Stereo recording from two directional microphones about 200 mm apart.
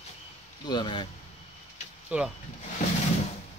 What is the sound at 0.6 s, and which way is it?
Speech, 20° left (ahead or behind).